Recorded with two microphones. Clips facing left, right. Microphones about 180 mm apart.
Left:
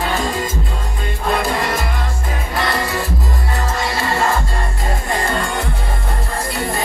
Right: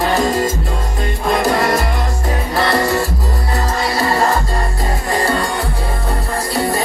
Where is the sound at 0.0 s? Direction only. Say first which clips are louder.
Right 5 dB; 40° right (ahead or behind).